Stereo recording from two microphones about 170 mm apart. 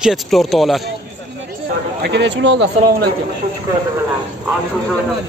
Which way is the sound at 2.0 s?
90° right.